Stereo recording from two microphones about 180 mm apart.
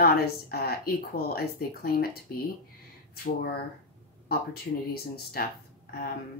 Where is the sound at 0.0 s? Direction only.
60° left (ahead or behind).